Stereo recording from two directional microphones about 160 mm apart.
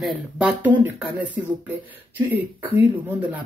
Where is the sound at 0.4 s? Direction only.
10° right (ahead or behind).